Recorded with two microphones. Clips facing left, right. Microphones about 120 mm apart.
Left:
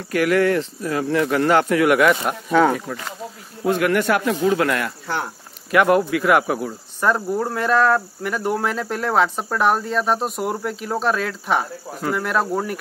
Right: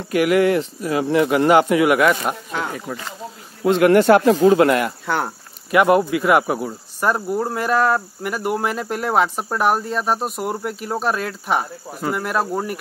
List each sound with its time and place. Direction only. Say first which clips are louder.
0.0 s speech: right 2 dB; 15° right (ahead or behind)
3.6 s speech: right 6 dB; 25° right (ahead or behind)
5.7 s speech: right 1 dB; 5° right (ahead or behind)